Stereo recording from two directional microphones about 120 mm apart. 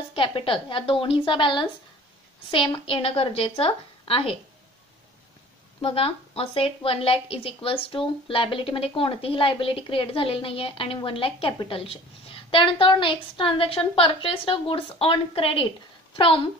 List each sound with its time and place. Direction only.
0.1 s a woman's voice: 45° left (ahead or behind)
5.8 s a woman's voice: 50° left (ahead or behind)